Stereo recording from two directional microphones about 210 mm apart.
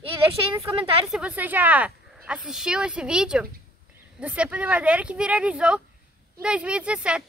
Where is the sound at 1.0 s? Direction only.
5° right (ahead or behind).